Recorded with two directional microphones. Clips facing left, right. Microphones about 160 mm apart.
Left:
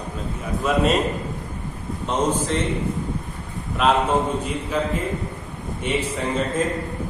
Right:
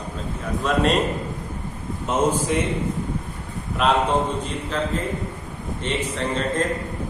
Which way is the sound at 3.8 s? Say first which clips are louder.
Left 1 dB; centre (ahead or behind).